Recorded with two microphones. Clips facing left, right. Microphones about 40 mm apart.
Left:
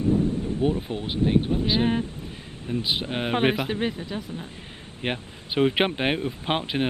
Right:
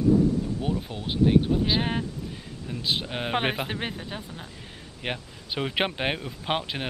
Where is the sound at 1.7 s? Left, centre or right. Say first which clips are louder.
Left 3 dB; centre.